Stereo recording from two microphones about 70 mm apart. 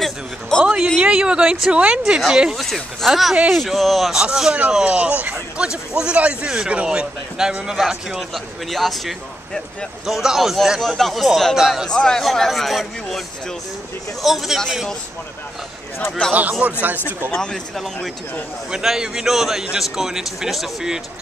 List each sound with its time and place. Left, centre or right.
0.0 s a sound: centre
1.0 s a man's voice: centre
11.9 s speech: centre
14.2 s speech: centre
16.6 s speech: right
17.4 s speech: centre
18.7 s speech: centre